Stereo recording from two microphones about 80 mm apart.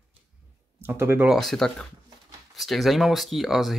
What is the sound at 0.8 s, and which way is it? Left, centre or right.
Speech, right.